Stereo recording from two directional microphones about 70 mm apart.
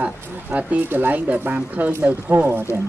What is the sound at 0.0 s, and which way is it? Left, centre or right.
Speech, centre.